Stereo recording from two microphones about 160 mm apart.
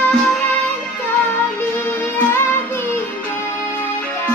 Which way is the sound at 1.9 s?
15° left (ahead or behind).